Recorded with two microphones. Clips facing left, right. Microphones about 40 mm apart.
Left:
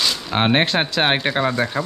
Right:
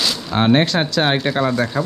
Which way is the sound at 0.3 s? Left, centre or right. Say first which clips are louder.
Right 3 dB; left.